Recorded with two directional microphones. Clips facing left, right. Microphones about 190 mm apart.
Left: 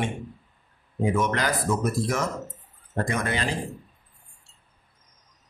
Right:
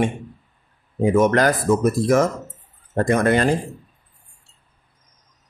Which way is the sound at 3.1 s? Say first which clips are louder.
Right 12 dB; 50° right (ahead or behind).